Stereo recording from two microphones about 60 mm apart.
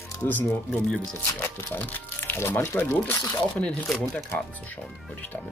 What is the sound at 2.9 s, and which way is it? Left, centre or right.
Speech, left.